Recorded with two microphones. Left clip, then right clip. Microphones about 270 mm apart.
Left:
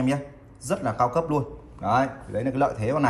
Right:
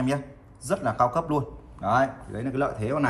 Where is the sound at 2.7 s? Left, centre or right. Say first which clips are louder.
Left 2 dB; centre.